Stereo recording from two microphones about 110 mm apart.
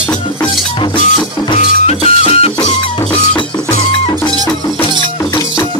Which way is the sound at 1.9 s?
65° left (ahead or behind).